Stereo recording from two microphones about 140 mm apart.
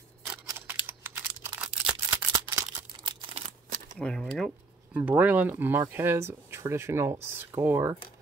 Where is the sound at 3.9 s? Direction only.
5° left (ahead or behind).